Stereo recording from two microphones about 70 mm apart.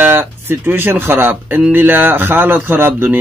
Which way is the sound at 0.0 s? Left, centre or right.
Right.